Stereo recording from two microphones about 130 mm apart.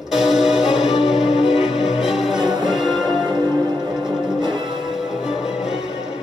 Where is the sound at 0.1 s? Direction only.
Centre (ahead or behind).